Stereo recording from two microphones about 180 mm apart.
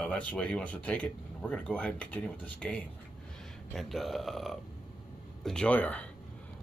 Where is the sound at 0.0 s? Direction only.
5° left (ahead or behind).